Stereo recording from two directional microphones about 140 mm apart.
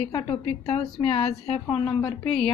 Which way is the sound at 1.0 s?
45° left (ahead or behind).